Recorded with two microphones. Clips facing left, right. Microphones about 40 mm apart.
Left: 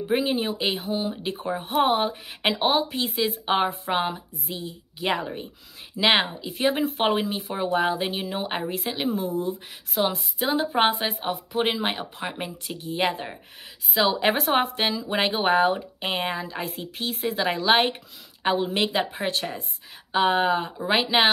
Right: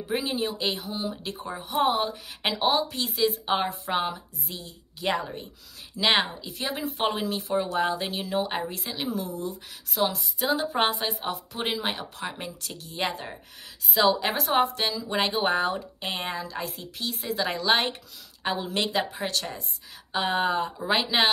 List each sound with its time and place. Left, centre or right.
0.0 s a woman's voice: left
4.1 s a woman's voice: left
6.6 s a woman's voice: left
8.5 s a woman's voice: left
8.9 s a woman's voice: left
11.2 s a woman's voice: left